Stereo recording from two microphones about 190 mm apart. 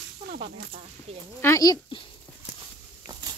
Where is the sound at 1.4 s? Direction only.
15° left (ahead or behind).